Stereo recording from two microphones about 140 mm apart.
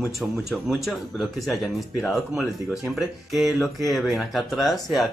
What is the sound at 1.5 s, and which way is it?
Speech, centre (ahead or behind).